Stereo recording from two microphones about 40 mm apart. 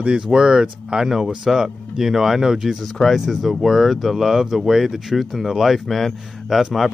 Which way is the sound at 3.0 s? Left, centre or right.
Centre.